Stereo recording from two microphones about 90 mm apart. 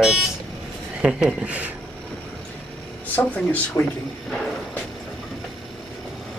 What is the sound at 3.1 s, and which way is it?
Speech, 20° left (ahead or behind).